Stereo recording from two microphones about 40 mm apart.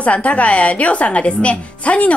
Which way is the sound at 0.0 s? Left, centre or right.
Left.